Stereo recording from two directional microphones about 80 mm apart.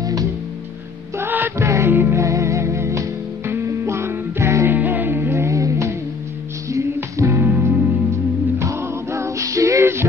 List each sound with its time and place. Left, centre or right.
0.0 s music: right
1.1 s music: right
1.6 s music: right
2.2 s music: right
4.6 s music: right